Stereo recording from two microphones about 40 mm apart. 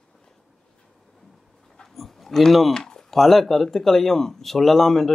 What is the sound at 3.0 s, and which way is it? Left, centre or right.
Speech, centre.